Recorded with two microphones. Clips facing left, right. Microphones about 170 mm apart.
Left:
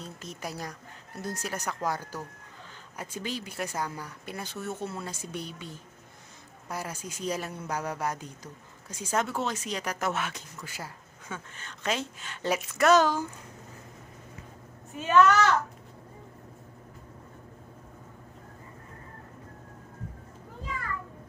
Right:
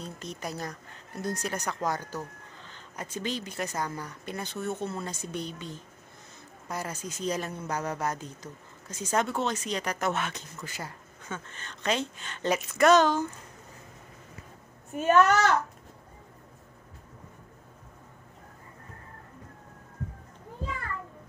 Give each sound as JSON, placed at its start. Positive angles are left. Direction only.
{"t": 0.0, "sound": "speech", "side_deg": 5}
{"t": 14.9, "sound": "speech", "side_deg": -45}